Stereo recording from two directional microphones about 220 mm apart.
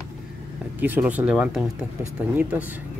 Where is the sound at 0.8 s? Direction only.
10° right (ahead or behind).